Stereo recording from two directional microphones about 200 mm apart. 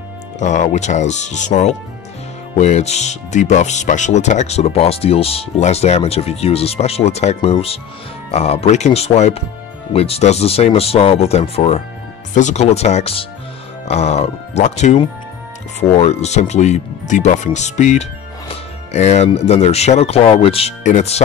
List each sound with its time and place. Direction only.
0.4 s speech: 35° left (ahead or behind)